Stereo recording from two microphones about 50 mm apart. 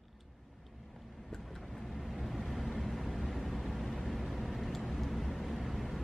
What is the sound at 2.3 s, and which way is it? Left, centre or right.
Vehicle, centre.